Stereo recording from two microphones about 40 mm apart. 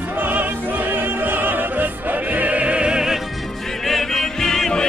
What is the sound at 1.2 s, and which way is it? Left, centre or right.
Opera, right.